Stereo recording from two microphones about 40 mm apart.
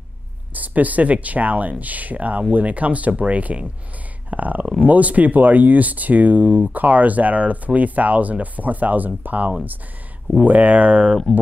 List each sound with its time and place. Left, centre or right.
0.6 s speech: right
11.3 s speech: left